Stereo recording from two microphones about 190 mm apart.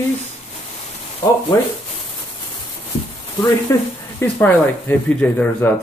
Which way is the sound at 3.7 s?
15° left (ahead or behind).